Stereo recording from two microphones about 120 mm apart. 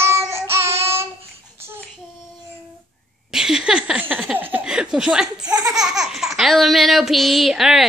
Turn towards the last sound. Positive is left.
turn(degrees=0)  # may be behind; listen again after turning